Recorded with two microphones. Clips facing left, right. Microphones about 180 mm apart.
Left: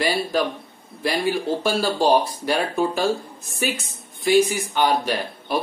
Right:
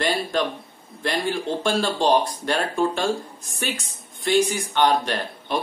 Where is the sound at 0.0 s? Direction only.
5° left (ahead or behind).